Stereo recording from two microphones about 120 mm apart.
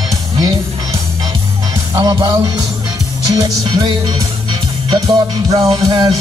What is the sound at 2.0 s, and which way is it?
Music, 30° right (ahead or behind).